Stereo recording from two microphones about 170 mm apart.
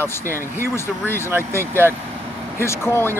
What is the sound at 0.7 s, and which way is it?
Speech, 15° left (ahead or behind).